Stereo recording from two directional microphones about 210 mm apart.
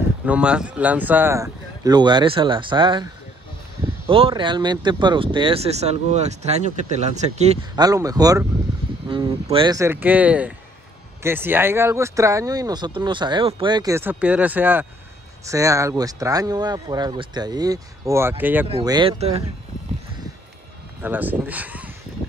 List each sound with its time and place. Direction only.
0.2 s speech: 5° right (ahead or behind); by 3.1 s 20° right (ahead or behind)
4.1 s speech: 25° right (ahead or behind)
7.7 s speech: 15° right (ahead or behind)
18.7 s speech: 25° right (ahead or behind)
21.0 s speech: 10° right (ahead or behind)